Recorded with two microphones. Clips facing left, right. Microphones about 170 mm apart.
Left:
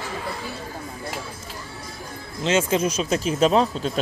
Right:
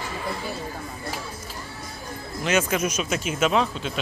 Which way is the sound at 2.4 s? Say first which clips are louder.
Left 2 dB; 25° left (ahead or behind).